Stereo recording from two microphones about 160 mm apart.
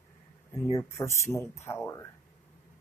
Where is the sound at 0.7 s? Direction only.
20° left (ahead or behind).